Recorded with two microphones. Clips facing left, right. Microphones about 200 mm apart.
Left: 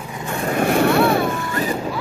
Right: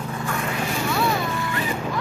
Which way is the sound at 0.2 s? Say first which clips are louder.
Left 4 dB; 25° left (ahead or behind).